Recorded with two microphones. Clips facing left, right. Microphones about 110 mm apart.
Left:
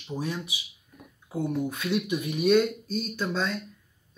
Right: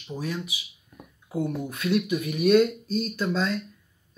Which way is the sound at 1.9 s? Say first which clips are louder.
Right 5 dB; 30° left (ahead or behind).